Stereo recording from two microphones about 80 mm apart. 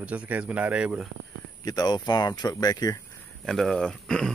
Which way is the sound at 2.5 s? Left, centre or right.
Left.